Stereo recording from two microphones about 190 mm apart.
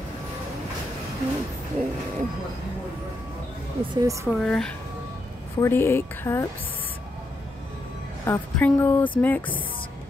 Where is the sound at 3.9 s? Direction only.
15° right (ahead or behind).